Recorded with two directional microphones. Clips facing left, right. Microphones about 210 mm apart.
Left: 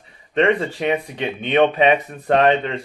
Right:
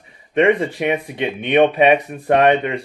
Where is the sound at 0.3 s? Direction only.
15° right (ahead or behind).